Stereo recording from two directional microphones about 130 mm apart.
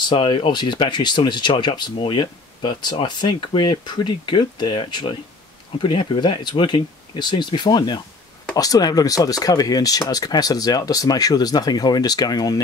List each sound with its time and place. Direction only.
0.1 s speech: 40° left (ahead or behind)